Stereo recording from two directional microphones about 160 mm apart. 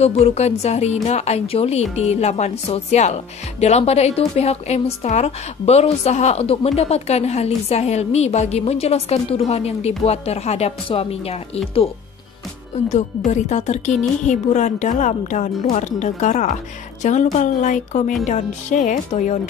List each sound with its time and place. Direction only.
0.0 s a woman's voice: 40° left (ahead or behind)
13.3 s speech: 45° left (ahead or behind)